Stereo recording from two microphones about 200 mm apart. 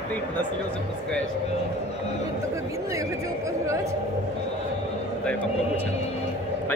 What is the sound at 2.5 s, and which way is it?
A man's voice, 15° right (ahead or behind).